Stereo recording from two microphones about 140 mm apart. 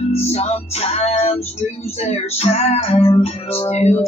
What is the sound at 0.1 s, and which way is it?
Music, 50° left (ahead or behind).